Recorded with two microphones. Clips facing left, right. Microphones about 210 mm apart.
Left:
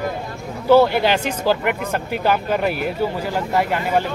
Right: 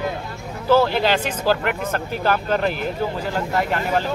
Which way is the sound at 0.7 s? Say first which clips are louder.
Left 3 dB; 15° left (ahead or behind).